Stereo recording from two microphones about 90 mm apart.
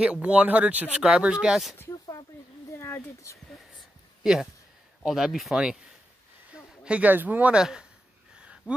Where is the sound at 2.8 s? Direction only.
25° left (ahead or behind).